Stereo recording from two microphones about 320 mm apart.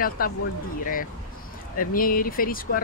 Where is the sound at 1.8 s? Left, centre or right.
Left.